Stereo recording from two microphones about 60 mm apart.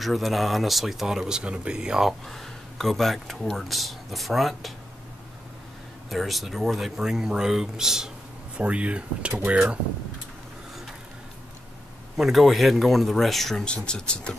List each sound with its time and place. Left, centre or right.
0.0 s speech: centre
2.2 s speech: centre
6.0 s speech: centre
8.5 s speech: right
12.2 s speech: centre
13.7 s speech: centre